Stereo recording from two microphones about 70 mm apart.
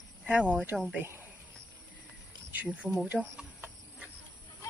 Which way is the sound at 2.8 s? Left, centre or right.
Centre.